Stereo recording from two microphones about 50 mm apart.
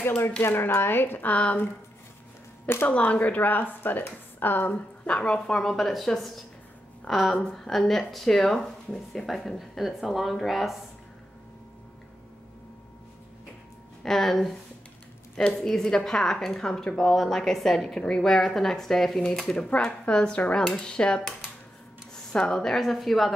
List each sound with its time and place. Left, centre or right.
0.4 s speech: left
1.3 s speech: left
2.9 s a woman's voice: left
4.7 s a woman's voice: left; by 10.8 s centre
14.0 s speech: centre
15.6 s a woman's voice: centre
17.8 s a woman's voice: centre
22.4 s a woman's voice: centre
22.8 s speech: centre